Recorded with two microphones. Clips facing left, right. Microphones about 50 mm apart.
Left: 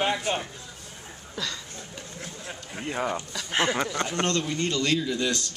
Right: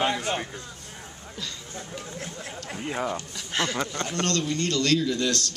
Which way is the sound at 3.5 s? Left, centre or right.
Centre.